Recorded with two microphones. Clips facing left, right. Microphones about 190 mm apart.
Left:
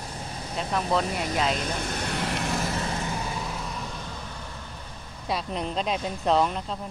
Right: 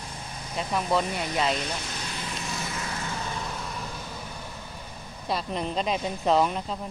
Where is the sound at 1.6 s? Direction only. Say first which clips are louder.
Left 3 dB; 55° left (ahead or behind).